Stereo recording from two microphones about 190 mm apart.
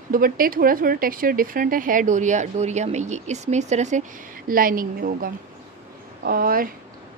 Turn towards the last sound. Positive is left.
turn(degrees=-50)  # may be behind; listen again after turning